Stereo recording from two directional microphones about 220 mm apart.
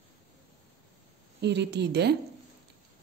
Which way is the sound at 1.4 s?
50° right (ahead or behind).